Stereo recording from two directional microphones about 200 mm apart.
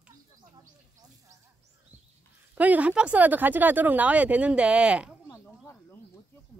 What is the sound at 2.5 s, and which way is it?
Speech, 5° right (ahead or behind).